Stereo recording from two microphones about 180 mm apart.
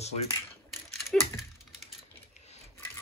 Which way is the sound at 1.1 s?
5° left (ahead or behind).